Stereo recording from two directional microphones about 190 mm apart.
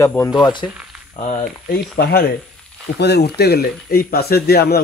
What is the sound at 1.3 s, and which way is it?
Speech, 50° left (ahead or behind).